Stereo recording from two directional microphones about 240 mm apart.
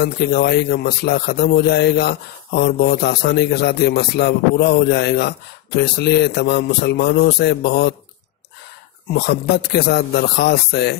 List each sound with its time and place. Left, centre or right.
0.0 s speech: left
9.1 s speech: left